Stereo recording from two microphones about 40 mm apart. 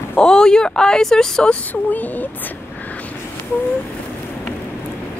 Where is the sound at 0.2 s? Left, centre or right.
Centre.